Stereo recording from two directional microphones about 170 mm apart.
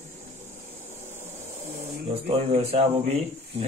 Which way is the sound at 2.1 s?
35° right (ahead or behind).